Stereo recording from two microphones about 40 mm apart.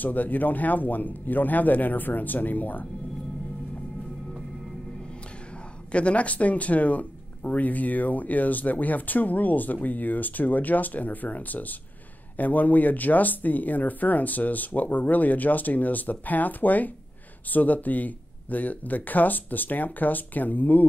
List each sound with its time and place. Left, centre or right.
0.0 s speech: left
5.9 s speech: left